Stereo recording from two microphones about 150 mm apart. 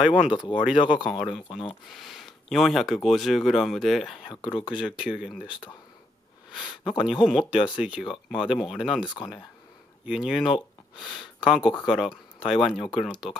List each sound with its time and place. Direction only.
0.3 s speech: 35° left (ahead or behind)
1.0 s speech: centre (ahead or behind)
4.4 s speech: 35° left (ahead or behind)
4.6 s speech: 5° right (ahead or behind)